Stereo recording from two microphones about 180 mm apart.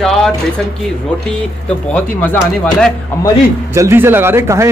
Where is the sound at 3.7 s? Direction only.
15° right (ahead or behind).